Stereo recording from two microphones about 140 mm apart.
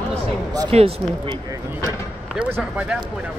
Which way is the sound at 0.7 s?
45° right (ahead or behind).